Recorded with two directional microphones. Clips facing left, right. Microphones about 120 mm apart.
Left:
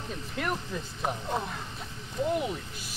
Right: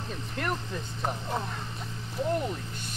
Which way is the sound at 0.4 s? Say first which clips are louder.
Even; 5° left (ahead or behind).